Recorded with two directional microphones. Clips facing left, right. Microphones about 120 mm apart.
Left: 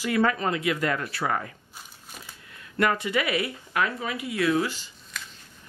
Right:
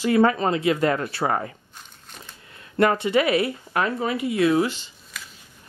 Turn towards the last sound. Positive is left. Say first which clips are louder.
# even
turn(degrees=-5)  # may be behind; listen again after turning